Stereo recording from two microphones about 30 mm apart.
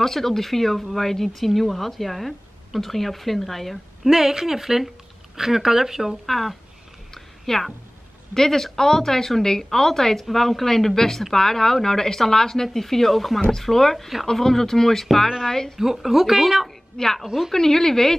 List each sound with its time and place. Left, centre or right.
0.0 s a woman's voice: centre
4.0 s speech: centre
6.2 s a woman's voice: centre
13.5 s speech: centre
15.8 s speech: centre
16.9 s a woman's voice: centre